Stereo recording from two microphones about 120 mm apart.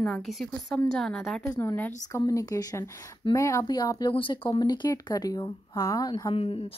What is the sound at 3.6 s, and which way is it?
Speech, 35° left (ahead or behind).